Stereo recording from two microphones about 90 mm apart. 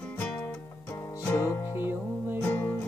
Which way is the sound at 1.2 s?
35° left (ahead or behind).